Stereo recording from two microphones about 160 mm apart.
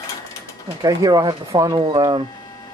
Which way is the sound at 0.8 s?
20° right (ahead or behind).